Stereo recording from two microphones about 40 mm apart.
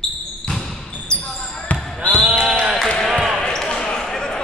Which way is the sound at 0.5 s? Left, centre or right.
Centre.